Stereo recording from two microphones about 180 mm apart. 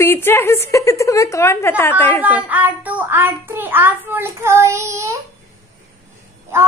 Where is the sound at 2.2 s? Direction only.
10° right (ahead or behind).